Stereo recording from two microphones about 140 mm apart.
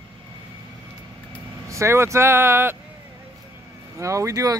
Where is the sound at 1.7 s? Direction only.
20° right (ahead or behind).